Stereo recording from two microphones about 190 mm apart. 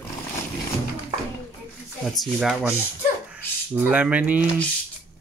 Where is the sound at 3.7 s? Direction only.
10° right (ahead or behind).